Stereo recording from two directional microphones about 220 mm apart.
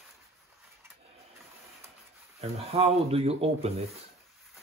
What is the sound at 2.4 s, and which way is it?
Speech, 25° right (ahead or behind).